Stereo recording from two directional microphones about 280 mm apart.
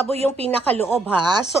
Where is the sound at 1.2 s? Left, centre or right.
Centre.